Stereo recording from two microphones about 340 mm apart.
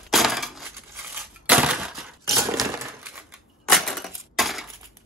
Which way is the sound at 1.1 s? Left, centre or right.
Centre.